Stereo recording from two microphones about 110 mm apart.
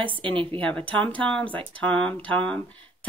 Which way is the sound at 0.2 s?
50° right (ahead or behind).